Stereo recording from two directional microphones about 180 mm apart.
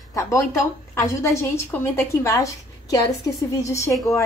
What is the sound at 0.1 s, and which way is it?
Speech, 15° left (ahead or behind).